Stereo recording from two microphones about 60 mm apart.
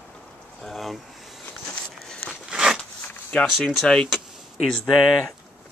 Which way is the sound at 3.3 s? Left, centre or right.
Centre.